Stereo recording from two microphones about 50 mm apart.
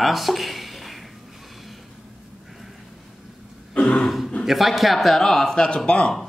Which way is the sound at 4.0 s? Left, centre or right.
Centre.